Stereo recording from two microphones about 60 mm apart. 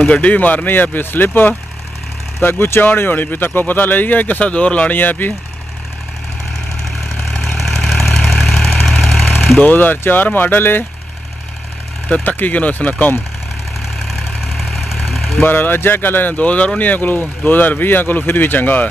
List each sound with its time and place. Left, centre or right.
0.0 s speech: left
7.5 s vehicle: centre
9.6 s speech: left
12.1 s speech: left
14.4 s vehicle: centre
15.4 s speech: left